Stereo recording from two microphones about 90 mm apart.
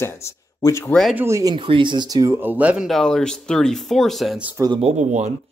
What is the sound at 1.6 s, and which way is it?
Speech, 65° right (ahead or behind).